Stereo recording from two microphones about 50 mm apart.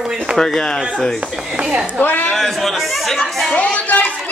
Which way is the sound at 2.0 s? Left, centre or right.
Left.